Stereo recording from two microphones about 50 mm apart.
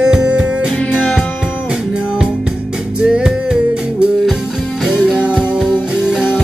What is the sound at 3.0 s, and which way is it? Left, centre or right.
Music, centre.